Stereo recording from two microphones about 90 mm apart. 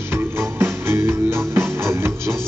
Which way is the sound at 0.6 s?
25° right (ahead or behind).